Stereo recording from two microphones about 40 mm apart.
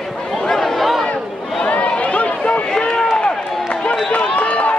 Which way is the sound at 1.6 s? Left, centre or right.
Left.